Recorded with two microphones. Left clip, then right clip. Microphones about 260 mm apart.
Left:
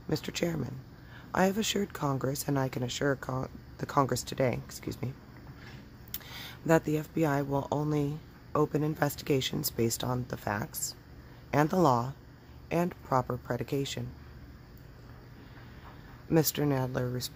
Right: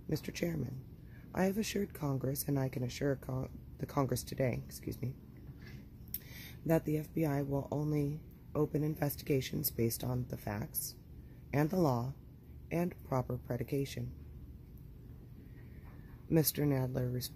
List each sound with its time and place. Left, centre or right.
0.1 s speech: centre
6.1 s a sound: centre
6.7 s speech: centre
16.3 s speech: centre